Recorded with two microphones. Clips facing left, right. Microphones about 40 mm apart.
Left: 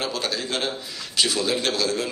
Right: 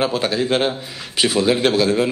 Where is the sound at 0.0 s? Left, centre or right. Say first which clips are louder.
Right 8 dB; right.